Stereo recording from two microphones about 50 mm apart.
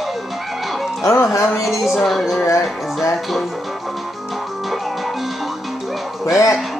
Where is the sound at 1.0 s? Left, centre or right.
Left.